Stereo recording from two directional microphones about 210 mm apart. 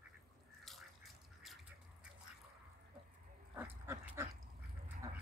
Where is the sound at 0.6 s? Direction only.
Centre (ahead or behind).